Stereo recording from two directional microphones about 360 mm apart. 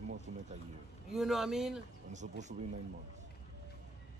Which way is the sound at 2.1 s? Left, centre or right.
Centre.